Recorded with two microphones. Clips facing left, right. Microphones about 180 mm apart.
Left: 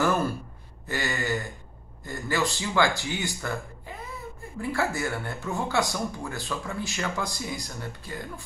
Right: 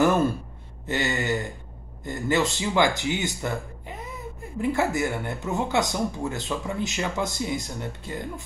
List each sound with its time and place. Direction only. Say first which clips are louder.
0.0 s gasp: right 4 dB; 20° right (ahead or behind)
0.8 s speech: right 3 dB; 20° right (ahead or behind)